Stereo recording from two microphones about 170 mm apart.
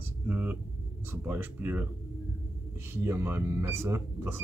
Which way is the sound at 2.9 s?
15° right (ahead or behind).